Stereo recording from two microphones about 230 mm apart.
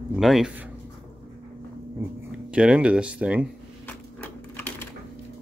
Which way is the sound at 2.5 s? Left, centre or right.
Centre.